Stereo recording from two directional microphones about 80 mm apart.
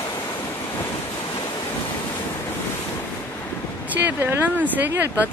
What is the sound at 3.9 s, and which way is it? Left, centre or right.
Speech, right.